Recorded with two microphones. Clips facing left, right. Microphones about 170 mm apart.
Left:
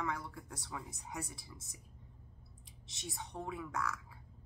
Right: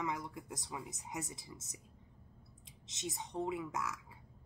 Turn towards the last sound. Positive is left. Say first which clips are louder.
# right 1 dB
turn(degrees=-20)  # may be behind; listen again after turning